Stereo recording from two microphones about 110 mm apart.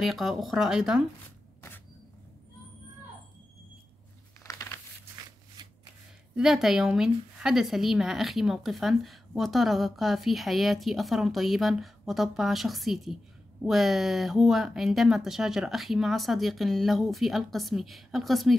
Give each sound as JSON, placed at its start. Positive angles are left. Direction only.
{"t": 0.0, "sound": "a woman's voice", "side_deg": 0}
{"t": 4.4, "sound": "a sound", "side_deg": 30}
{"t": 6.3, "sound": "a woman's voice", "side_deg": -5}